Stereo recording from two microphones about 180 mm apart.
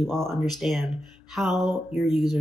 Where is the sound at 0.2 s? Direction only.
Centre (ahead or behind).